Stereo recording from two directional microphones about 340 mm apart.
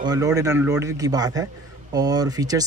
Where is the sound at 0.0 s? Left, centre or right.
Centre.